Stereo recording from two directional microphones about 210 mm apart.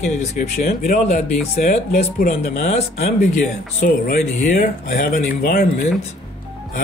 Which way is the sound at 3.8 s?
40° left (ahead or behind).